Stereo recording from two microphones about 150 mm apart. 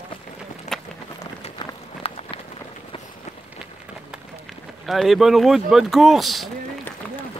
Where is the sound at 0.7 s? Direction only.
50° left (ahead or behind).